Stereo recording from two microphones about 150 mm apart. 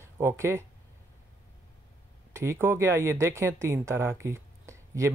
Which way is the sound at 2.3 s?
15° right (ahead or behind).